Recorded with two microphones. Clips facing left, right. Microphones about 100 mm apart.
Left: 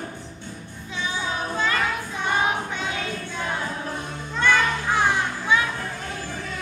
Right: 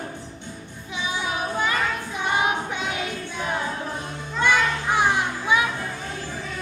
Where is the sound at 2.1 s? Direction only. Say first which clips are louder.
Right 1 dB; 15° right (ahead or behind).